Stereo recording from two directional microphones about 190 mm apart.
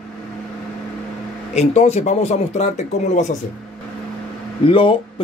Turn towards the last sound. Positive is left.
turn(degrees=25)  # may be behind; listen again after turning